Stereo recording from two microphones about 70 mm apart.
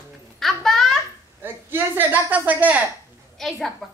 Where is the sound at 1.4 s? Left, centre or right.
Right.